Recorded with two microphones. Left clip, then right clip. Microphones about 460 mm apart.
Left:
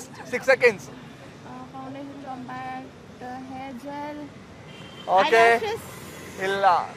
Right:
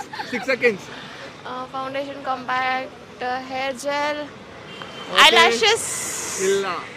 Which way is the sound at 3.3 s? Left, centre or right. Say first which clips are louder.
Right 11 dB; right.